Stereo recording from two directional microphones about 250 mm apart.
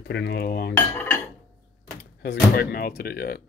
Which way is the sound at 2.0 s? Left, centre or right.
Left.